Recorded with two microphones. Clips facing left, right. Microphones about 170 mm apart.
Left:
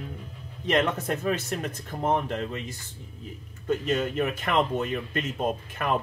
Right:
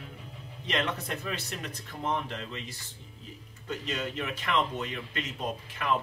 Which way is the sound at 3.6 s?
50° left (ahead or behind).